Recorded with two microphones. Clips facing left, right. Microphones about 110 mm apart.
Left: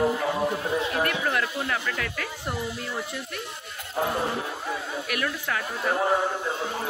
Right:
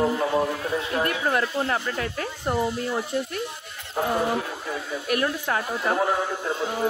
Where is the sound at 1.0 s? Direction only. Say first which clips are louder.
Right 2 dB; 30° right (ahead or behind).